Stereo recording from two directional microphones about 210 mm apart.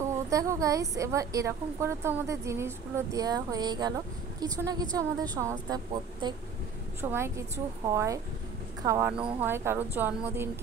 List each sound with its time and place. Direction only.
0.0 s a woman's voice: 15° right (ahead or behind)